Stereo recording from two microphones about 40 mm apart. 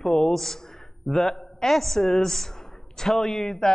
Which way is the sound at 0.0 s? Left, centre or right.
Centre.